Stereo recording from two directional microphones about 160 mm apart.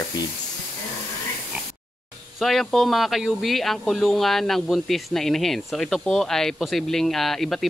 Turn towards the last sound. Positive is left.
turn(degrees=0)  # may be behind; listen again after turning